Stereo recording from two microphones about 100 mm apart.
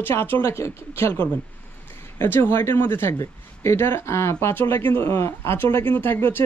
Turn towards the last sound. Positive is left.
turn(degrees=20)  # may be behind; listen again after turning